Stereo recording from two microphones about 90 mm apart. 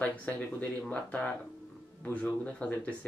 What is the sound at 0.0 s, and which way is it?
Speech, 15° left (ahead or behind).